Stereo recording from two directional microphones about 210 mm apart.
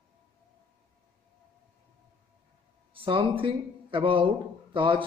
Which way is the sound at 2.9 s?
25° right (ahead or behind).